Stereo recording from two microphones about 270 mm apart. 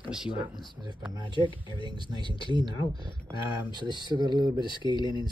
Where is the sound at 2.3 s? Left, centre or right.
Centre.